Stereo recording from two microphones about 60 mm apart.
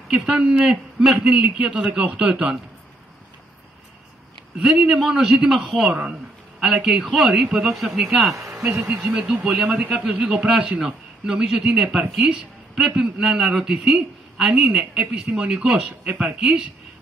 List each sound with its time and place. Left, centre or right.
0.1 s a man's voice: centre
4.6 s a man's voice: centre
5.9 s a man's voice: centre
6.6 s a man's voice: centre
8.8 s a man's voice: centre
12.3 s a sound: centre
12.8 s a man's voice: centre